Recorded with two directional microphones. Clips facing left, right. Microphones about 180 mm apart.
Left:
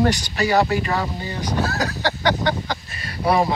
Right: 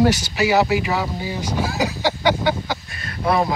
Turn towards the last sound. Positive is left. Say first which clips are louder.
# left 1 dB
turn(degrees=10)  # may be behind; listen again after turning